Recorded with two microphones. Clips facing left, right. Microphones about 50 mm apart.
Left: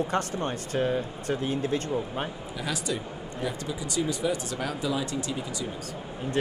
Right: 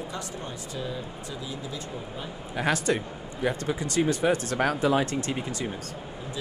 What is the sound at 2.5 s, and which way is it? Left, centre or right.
Speech, right.